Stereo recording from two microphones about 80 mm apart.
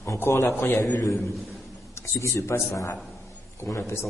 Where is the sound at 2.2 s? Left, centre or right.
Left.